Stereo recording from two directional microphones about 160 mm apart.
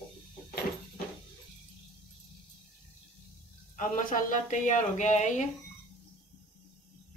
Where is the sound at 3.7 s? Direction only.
55° left (ahead or behind).